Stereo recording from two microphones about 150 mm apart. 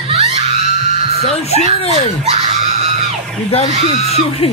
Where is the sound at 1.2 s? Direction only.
45° left (ahead or behind).